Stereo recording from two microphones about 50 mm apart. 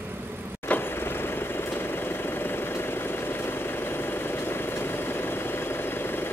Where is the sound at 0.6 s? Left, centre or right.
Left.